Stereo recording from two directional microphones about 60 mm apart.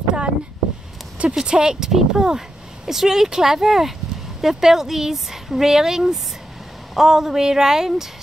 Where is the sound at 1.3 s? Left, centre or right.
Centre.